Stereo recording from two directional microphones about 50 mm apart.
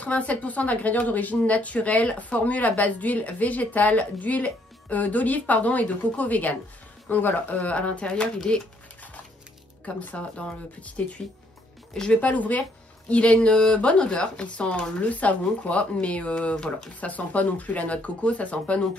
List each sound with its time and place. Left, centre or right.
0.0 s speech: left
9.8 s speech: left
12.2 s speech: left
16.5 s speech: centre
16.9 s speech: left